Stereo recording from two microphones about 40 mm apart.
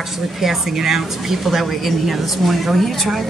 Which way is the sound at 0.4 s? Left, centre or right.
Centre.